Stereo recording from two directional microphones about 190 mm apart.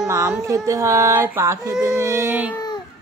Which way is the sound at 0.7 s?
15° right (ahead or behind).